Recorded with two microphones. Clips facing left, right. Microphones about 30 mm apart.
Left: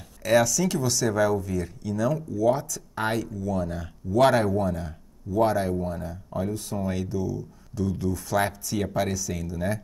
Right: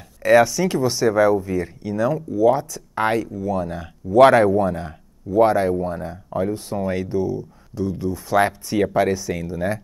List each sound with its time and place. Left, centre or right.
0.2 s speech: right
7.7 s speech: right